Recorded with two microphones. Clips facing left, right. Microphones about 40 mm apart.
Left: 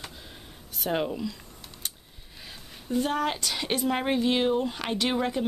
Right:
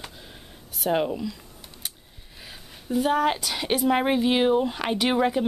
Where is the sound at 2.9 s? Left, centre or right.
Centre.